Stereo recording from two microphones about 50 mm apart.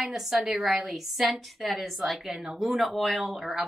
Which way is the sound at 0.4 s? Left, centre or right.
Centre.